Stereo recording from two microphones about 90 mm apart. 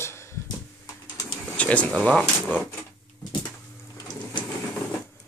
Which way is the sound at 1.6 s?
15° left (ahead or behind).